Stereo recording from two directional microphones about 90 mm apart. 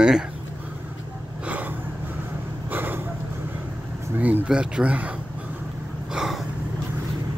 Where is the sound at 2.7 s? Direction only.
20° right (ahead or behind).